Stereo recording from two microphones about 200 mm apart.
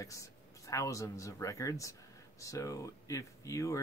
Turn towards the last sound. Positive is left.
turn(degrees=15)  # may be behind; listen again after turning